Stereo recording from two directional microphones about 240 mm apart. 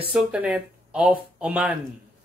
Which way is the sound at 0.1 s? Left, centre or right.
Centre.